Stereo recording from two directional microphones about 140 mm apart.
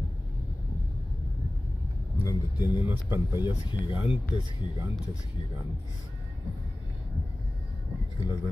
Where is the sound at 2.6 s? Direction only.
15° right (ahead or behind).